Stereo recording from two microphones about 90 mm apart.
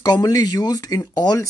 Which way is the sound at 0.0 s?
45° left (ahead or behind).